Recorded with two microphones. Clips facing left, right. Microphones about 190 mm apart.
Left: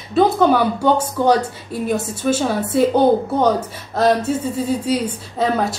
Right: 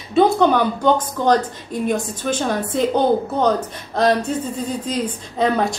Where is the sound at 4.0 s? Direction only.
5° left (ahead or behind).